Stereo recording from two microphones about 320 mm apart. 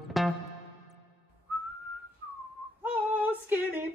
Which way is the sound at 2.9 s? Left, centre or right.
Centre.